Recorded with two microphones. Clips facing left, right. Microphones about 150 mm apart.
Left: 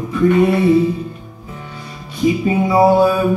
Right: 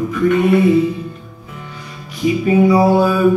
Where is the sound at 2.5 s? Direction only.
25° left (ahead or behind).